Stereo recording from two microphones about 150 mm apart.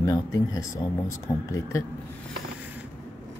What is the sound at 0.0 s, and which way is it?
Speech, 25° left (ahead or behind).